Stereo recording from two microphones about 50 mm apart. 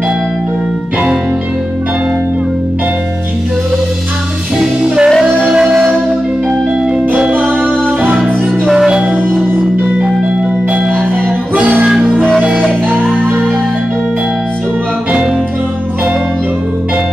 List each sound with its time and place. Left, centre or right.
4.8 s music: centre
8.7 s music: centre
11.5 s music: right